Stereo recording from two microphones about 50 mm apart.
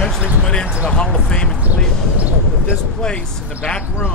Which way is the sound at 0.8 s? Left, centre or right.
Centre.